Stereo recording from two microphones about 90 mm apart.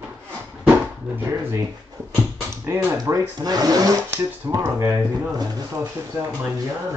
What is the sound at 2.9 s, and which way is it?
Speech, 40° right (ahead or behind).